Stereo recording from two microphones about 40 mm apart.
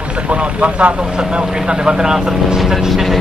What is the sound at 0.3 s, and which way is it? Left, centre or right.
Speech, right.